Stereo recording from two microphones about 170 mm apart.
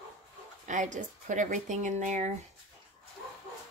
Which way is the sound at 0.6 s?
45° right (ahead or behind).